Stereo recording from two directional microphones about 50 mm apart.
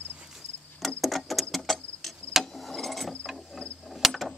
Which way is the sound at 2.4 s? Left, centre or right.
Centre.